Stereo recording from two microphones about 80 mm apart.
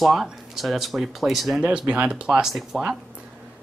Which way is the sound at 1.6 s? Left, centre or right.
Centre.